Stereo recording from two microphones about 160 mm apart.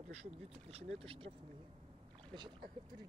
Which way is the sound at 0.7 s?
40° right (ahead or behind).